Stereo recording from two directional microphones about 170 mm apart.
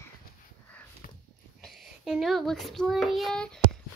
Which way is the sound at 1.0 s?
55° left (ahead or behind).